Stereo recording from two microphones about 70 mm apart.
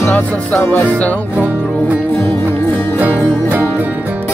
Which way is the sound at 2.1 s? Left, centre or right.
Left.